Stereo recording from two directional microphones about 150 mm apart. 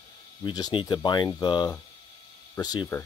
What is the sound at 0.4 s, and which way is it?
Speech, 25° left (ahead or behind).